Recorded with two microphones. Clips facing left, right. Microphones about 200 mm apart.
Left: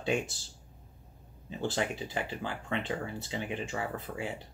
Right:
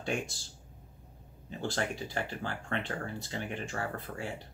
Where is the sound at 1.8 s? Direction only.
20° left (ahead or behind).